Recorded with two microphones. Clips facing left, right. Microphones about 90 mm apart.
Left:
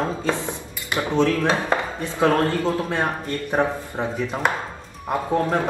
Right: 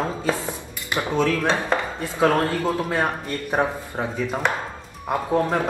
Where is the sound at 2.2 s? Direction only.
20° right (ahead or behind).